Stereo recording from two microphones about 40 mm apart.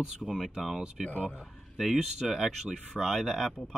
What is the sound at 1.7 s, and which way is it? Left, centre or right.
Speech, centre.